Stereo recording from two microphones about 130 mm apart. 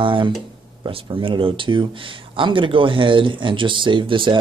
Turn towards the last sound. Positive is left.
turn(degrees=-40)  # may be behind; listen again after turning